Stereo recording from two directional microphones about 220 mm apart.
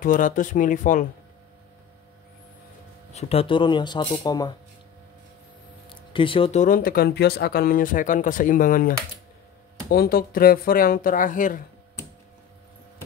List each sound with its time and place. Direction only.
0.0 s speech: 35° left (ahead or behind)
3.1 s speech: 30° left (ahead or behind)
5.9 s speech: 25° left (ahead or behind)